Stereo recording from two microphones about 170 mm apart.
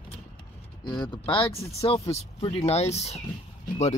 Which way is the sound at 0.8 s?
25° left (ahead or behind).